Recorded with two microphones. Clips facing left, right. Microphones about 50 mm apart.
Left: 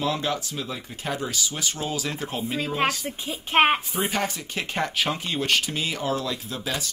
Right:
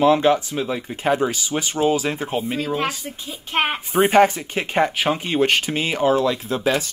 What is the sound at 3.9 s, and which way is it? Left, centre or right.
Speech, right.